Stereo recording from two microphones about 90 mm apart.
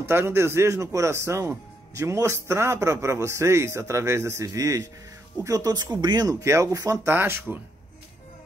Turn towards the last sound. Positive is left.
turn(degrees=-20)  # may be behind; listen again after turning